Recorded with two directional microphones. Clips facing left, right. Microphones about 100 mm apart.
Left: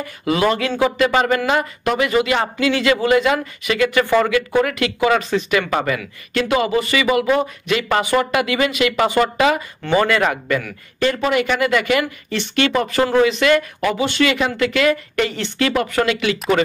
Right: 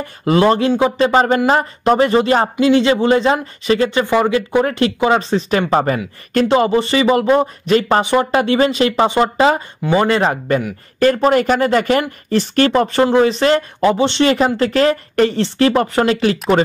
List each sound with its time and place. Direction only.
0.2 s speech: 35° right (ahead or behind)
4.0 s speech: 15° right (ahead or behind); by 8.0 s 35° right (ahead or behind)
8.0 s speech: 25° right (ahead or behind)
11.0 s speech: 45° right (ahead or behind); by 14.2 s 25° right (ahead or behind)
14.2 s speech: 35° right (ahead or behind)